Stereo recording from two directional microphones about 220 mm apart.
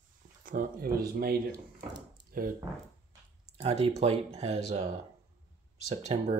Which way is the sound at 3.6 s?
25° right (ahead or behind).